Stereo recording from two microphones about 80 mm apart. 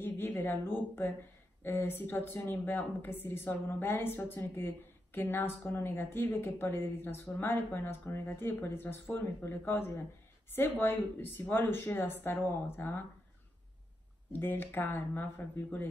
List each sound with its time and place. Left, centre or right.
0.0 s speech: left
14.4 s speech: left